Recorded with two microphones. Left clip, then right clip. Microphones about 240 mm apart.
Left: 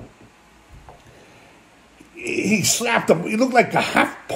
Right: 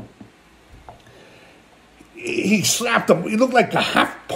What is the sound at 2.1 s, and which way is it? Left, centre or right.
A man's voice, centre.